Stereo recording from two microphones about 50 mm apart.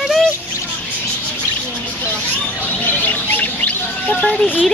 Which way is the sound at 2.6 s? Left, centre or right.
Left.